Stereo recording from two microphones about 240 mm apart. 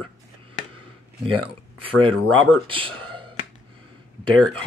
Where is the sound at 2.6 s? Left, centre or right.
Right.